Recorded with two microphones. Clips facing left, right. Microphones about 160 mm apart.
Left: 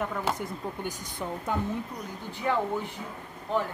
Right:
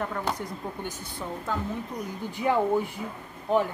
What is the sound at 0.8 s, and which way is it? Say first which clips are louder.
Speech: left 1 dB; 15° left (ahead or behind).